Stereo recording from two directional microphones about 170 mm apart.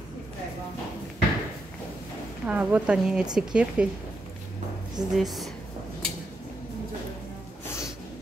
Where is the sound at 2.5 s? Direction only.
10° right (ahead or behind).